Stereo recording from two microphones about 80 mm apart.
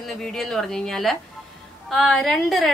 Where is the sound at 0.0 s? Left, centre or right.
Centre.